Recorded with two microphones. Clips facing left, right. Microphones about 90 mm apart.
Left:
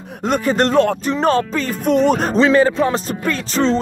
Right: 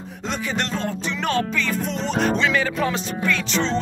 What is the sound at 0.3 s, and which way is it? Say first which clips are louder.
Speech: left 10 dB; 45° left (ahead or behind).